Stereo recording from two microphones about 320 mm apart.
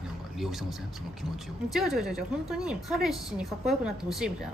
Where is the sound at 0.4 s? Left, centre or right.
Centre.